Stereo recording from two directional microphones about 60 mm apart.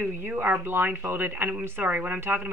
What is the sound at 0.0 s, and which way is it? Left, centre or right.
Speech, right.